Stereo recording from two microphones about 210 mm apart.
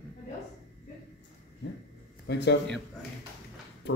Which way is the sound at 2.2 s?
55° left (ahead or behind).